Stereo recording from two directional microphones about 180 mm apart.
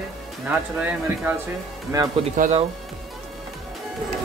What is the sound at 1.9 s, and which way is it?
Speech, 20° right (ahead or behind).